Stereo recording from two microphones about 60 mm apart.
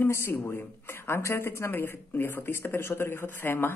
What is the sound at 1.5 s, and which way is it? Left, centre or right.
Speech, left.